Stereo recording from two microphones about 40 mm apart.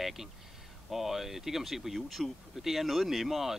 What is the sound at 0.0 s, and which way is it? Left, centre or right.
Speech, centre.